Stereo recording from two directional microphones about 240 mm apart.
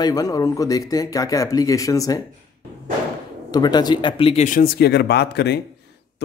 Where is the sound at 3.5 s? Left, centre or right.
Centre; by 5.6 s left.